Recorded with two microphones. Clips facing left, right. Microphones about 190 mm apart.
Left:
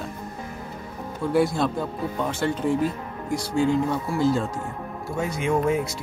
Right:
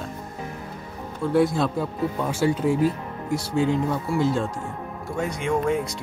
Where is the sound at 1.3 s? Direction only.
Centre (ahead or behind).